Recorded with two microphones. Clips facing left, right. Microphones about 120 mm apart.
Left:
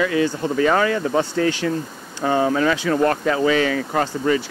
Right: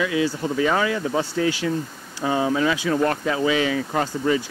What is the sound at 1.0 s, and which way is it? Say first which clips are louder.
Speech: left 3 dB; 40° left (ahead or behind).